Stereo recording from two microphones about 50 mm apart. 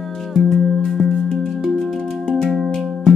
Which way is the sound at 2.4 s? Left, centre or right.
Centre.